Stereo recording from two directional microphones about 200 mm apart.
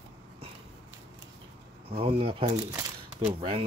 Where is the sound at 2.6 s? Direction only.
15° right (ahead or behind).